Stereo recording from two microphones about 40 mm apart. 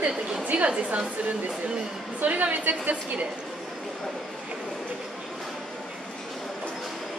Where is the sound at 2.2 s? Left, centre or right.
Right.